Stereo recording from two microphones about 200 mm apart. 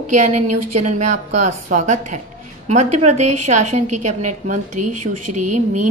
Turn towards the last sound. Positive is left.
turn(degrees=-35)  # may be behind; listen again after turning